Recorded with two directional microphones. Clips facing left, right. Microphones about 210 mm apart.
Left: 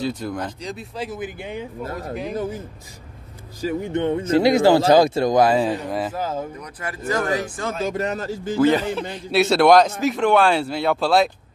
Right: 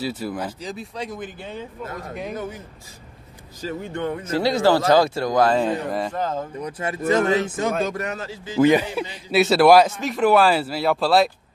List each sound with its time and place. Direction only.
0.0 s speech: 5° right (ahead or behind); by 1.9 s 15° left (ahead or behind)
3.6 s a man's voice: 20° left (ahead or behind)
6.6 s speech: 25° right (ahead or behind)
7.9 s speech: 35° left (ahead or behind)
8.5 s a man's voice: 15° right (ahead or behind)
9.3 s speech: centre (ahead or behind)